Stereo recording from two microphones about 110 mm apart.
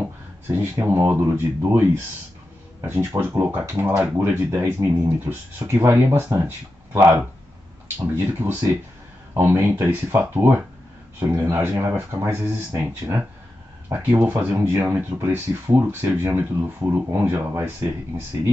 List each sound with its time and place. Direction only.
0.5 s speech: 20° right (ahead or behind)
8.4 s speech: 25° right (ahead or behind)